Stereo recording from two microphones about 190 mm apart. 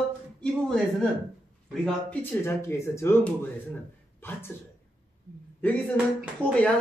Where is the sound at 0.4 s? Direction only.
5° left (ahead or behind).